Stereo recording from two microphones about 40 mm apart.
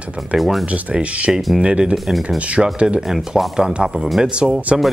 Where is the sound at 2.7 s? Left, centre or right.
Right.